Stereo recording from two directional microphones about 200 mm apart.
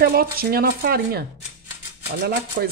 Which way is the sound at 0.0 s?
50° right (ahead or behind).